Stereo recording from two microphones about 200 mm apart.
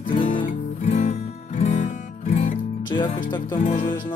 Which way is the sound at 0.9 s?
40° left (ahead or behind).